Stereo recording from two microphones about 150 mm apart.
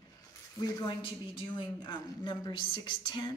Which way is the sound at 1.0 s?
35° left (ahead or behind).